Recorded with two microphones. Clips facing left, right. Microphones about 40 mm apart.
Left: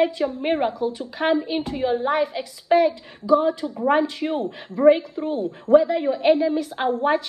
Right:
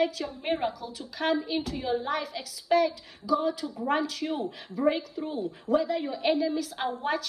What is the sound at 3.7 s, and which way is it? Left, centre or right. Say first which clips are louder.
Speech: left 8 dB; left.